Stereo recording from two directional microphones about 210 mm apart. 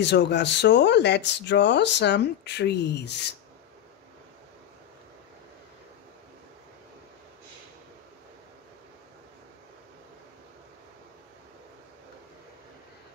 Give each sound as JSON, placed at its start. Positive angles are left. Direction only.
{"t": 0.0, "sound": "speech", "side_deg": 55}